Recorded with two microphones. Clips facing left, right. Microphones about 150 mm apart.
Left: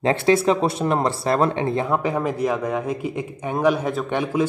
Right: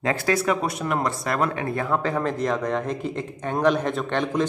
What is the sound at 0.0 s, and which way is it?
Speech, 25° left (ahead or behind).